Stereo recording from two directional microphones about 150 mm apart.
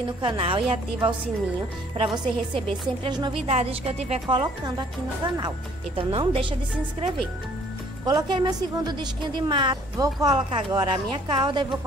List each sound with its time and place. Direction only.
0.2 s a woman's voice: 35° right (ahead or behind)
8.0 s a woman's voice: 30° right (ahead or behind)